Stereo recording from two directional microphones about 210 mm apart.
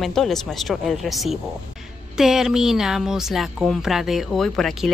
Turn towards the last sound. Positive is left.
turn(degrees=0)  # may be behind; listen again after turning